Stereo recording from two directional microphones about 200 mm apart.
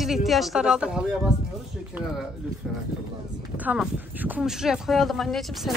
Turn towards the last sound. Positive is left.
turn(degrees=0)  # may be behind; listen again after turning